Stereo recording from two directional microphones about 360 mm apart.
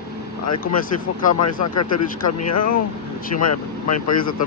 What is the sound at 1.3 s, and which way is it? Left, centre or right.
Speech, left.